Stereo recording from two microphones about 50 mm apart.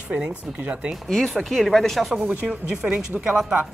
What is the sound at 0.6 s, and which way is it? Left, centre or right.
Speech, right.